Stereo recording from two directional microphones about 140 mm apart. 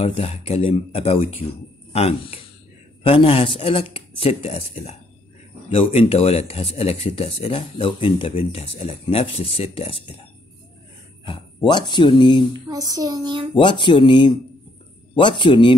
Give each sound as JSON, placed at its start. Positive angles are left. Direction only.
{"t": 0.0, "sound": "speech", "side_deg": 45}
{"t": 11.2, "sound": "speech", "side_deg": 35}
{"t": 12.6, "sound": "child singing", "side_deg": -25}
{"t": 13.6, "sound": "speech", "side_deg": 35}